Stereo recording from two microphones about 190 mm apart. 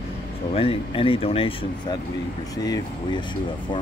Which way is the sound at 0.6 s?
30° left (ahead or behind).